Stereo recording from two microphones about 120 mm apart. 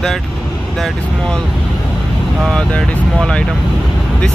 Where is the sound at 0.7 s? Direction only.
Centre (ahead or behind).